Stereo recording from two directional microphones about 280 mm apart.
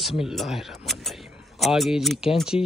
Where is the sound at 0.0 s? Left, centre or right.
Centre.